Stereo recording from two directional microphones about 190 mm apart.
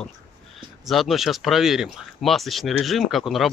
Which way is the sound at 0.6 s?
Centre (ahead or behind).